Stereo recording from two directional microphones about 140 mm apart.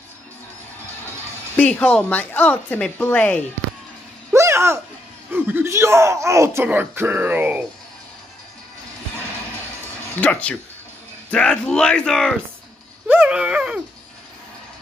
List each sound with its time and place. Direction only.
1.6 s a woman's voice: 10° left (ahead or behind)
4.3 s a sound: 20° right (ahead or behind)
5.3 s speech: 15° right (ahead or behind)
10.2 s a woman's voice: 10° left (ahead or behind)
13.1 s dog: 10° right (ahead or behind)